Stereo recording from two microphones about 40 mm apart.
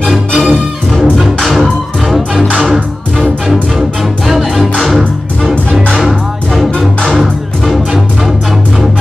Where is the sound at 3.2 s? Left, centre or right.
Centre.